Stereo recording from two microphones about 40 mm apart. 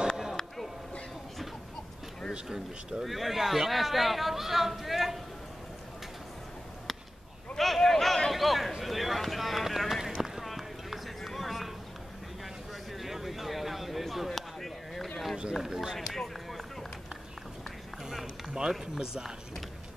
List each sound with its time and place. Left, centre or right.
0.4 s a sound: centre
2.3 s speech: right
3.0 s speech: centre
7.5 s a sound: centre
8.8 s run: centre
10.1 s clip-clop: centre
10.4 s clip-clop: centre
12.9 s a sound: centre
15.5 s speech: centre
16.0 s run: centre
18.1 s speech: centre